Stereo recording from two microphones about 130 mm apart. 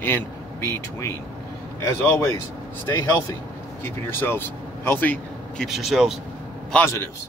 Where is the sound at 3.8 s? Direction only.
15° left (ahead or behind).